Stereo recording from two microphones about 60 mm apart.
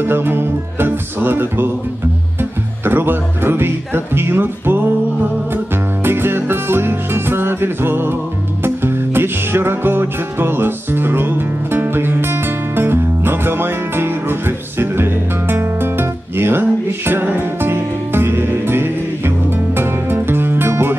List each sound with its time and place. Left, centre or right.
0.0 s music: right
2.8 s music: right
6.0 s music: right